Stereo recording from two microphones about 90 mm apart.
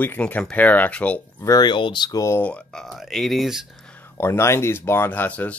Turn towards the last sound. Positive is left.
turn(degrees=15)  # may be behind; listen again after turning